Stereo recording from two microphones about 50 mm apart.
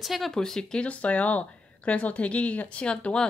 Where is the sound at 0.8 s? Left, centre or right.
Left.